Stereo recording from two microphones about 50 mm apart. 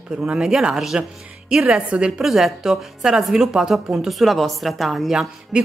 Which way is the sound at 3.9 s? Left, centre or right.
Centre.